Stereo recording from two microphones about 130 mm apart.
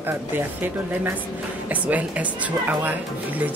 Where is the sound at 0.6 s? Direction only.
15° right (ahead or behind).